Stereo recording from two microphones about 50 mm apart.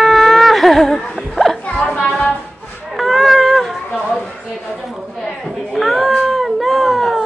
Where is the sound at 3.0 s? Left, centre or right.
Centre.